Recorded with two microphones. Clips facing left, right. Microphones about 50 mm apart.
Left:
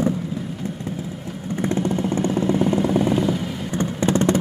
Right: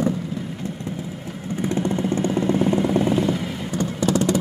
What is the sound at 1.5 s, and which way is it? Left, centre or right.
Vehicle, left.